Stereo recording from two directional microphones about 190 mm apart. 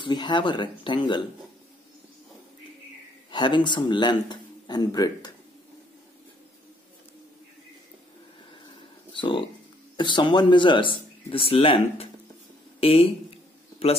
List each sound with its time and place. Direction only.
0.0 s speech: 25° left (ahead or behind)
3.3 s speech: 25° left (ahead or behind)
9.1 s speech: 25° left (ahead or behind)
12.8 s a sound: 30° left (ahead or behind)